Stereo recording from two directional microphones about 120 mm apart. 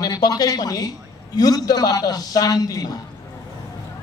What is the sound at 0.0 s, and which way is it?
A woman's voice, 30° left (ahead or behind).